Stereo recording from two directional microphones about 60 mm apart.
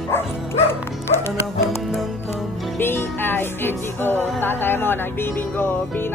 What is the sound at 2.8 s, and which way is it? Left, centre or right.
Music, left.